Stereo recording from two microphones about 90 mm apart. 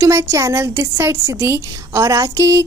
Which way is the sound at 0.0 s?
30° right (ahead or behind).